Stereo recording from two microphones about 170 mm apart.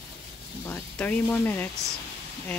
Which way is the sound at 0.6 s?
10° left (ahead or behind).